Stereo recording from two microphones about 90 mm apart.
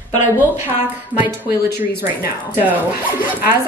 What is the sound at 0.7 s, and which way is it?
Speech, 20° right (ahead or behind).